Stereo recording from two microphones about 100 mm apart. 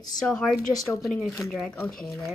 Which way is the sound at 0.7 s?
35° left (ahead or behind).